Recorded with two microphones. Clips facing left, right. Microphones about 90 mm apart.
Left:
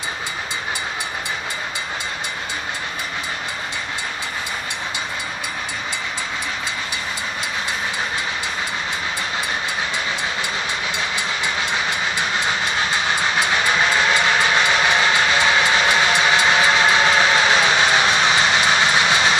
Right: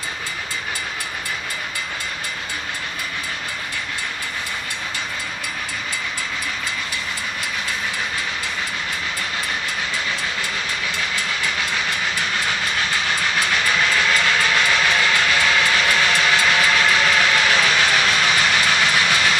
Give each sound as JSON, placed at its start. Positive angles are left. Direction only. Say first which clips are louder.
{"t": 11.0, "sound": "train", "louder": "left 1 dB", "side_deg": 20}